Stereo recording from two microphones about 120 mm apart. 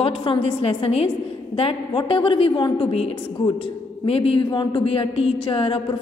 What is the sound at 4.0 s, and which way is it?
A woman's voice, 50° left (ahead or behind).